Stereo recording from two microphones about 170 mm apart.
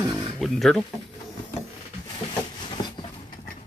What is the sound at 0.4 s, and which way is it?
Speech, 5° left (ahead or behind).